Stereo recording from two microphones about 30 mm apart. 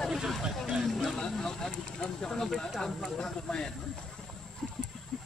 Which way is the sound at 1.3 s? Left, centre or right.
Centre.